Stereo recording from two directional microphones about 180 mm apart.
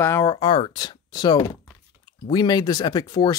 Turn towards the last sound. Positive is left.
turn(degrees=20)  # may be behind; listen again after turning